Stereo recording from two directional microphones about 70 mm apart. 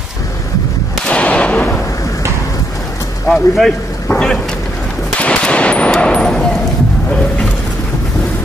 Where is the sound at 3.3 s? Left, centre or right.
Centre.